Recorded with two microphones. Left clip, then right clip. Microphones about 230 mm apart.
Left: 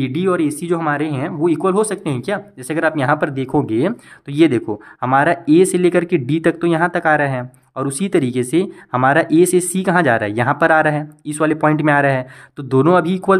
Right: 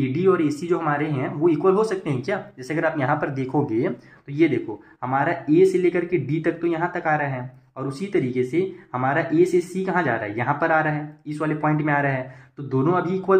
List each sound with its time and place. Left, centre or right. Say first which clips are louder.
0.0 s speech: left 2 dB; left